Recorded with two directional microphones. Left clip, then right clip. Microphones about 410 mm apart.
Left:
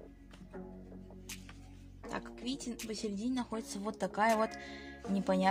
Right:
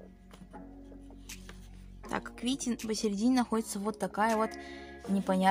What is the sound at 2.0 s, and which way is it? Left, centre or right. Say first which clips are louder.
Speech: right 6 dB; left.